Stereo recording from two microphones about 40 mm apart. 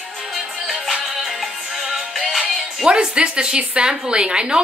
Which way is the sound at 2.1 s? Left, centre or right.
Centre.